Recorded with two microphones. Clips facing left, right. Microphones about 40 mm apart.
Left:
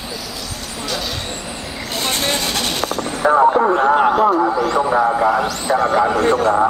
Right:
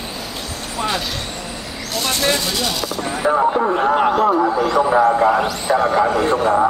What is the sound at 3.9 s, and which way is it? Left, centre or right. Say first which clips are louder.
Speech: left 1 dB; centre.